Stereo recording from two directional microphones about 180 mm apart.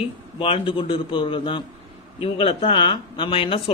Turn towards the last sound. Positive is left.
turn(degrees=30)  # may be behind; listen again after turning